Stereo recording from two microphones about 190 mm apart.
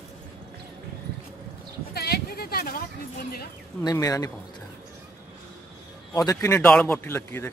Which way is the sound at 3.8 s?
20° left (ahead or behind).